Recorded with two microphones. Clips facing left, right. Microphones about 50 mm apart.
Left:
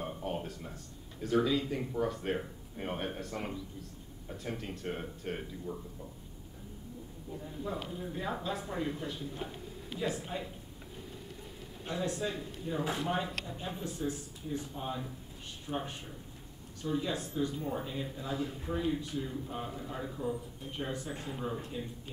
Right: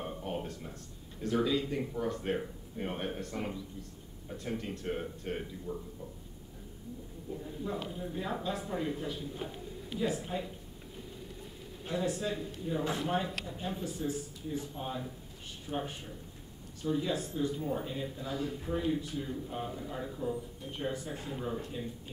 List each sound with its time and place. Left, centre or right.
0.0 s a sound: centre
1.2 s speech: centre
7.6 s speech: centre
11.9 s speech: centre
18.2 s speech: centre
18.7 s speech: centre